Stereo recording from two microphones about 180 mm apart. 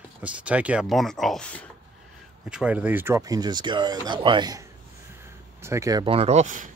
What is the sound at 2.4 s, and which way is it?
Speech, 5° right (ahead or behind).